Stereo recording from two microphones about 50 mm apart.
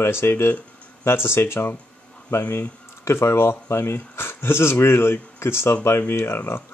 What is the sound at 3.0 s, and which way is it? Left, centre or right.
Speech, left.